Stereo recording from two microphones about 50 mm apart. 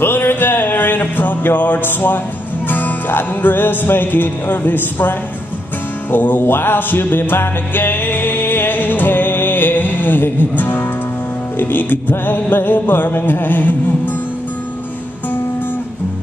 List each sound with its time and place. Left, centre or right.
0.0 s music: left
6.1 s music: left